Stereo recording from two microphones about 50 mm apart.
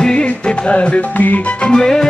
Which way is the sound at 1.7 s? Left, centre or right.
Centre.